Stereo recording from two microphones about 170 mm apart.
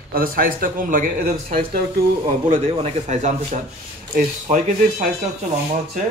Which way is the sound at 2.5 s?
35° right (ahead or behind).